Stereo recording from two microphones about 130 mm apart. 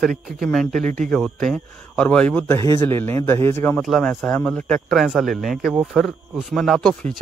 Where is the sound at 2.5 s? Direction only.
25° left (ahead or behind).